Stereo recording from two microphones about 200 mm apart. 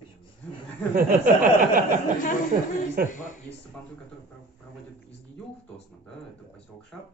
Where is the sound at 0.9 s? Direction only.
45° right (ahead or behind).